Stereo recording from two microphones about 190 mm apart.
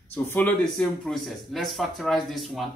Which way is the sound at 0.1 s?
10° left (ahead or behind).